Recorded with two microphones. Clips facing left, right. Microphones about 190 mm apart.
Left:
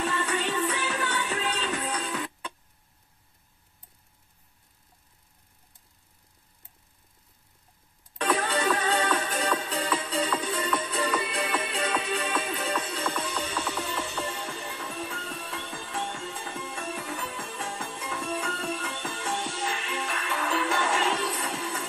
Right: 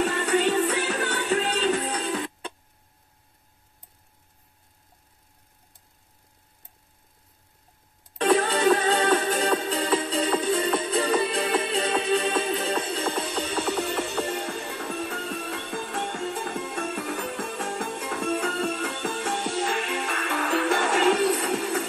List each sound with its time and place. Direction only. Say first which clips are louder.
0.0 s music: right 6 dB; 40° right (ahead or behind)
8.2 s music: right 6 dB; 35° right (ahead or behind)
13.9 s music: right 5 dB; 55° right (ahead or behind)